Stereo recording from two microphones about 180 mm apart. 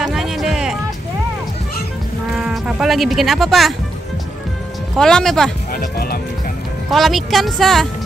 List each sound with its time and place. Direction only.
0.0 s music: centre (ahead or behind)
2.3 s speech: 5° right (ahead or behind)
4.9 s speech: 5° left (ahead or behind)
5.7 s music: 55° left (ahead or behind)
6.9 s speech: centre (ahead or behind)